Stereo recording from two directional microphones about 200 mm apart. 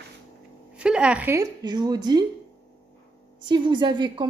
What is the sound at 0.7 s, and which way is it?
A woman's voice, 5° right (ahead or behind).